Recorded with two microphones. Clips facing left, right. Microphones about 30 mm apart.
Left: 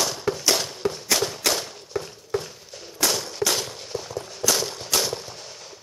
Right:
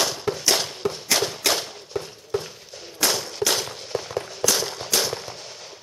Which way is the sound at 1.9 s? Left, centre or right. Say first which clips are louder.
Even; centre.